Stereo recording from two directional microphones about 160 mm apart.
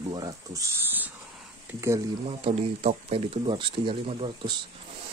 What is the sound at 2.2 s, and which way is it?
Speech, 40° right (ahead or behind).